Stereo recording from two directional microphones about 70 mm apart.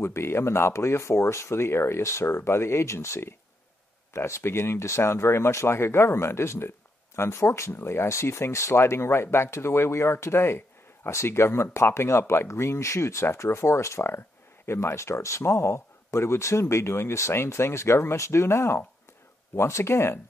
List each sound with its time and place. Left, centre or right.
0.0 s speech: left